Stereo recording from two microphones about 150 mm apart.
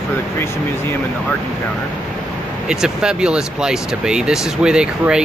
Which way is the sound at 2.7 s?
5° right (ahead or behind).